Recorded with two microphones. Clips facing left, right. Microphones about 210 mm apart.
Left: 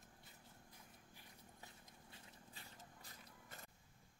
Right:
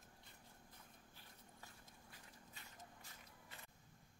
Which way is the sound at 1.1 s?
20° left (ahead or behind).